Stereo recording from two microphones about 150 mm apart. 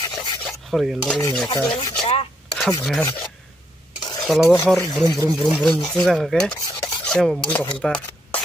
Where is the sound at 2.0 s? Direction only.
40° left (ahead or behind).